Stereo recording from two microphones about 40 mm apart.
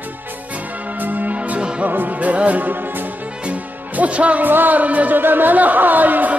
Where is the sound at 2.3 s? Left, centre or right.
Right.